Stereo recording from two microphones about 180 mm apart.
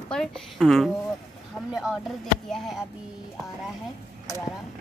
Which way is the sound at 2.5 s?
Centre (ahead or behind).